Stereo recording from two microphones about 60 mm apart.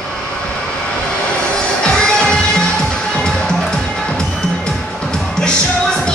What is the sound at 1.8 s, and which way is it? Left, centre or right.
Music, centre.